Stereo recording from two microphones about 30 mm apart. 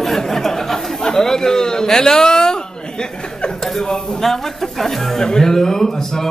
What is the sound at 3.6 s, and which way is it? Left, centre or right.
A man's voice, centre.